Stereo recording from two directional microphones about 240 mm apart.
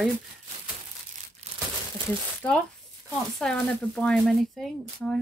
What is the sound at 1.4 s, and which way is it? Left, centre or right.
Crumpling, right.